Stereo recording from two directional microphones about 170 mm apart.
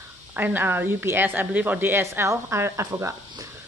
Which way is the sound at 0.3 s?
10° right (ahead or behind).